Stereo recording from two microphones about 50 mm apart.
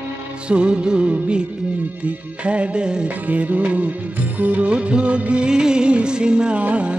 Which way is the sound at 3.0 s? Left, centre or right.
Right.